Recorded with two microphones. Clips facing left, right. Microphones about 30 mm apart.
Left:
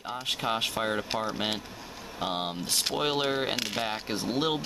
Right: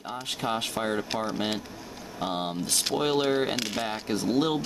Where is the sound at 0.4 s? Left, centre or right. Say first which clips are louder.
Right 1 dB; centre.